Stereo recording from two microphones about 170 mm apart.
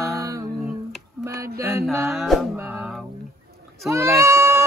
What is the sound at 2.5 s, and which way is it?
Music, 10° right (ahead or behind).